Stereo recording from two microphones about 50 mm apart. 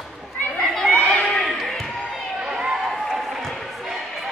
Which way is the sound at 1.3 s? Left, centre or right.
Centre.